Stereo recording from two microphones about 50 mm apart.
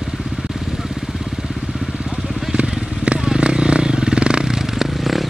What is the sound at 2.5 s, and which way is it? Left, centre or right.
Vehicle, right.